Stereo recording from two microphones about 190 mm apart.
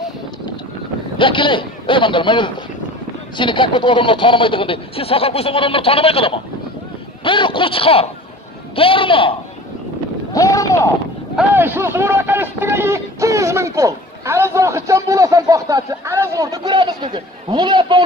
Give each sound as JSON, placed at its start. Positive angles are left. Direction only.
{"t": 1.1, "sound": "speech", "side_deg": 25}
{"t": 11.3, "sound": "speech", "side_deg": -10}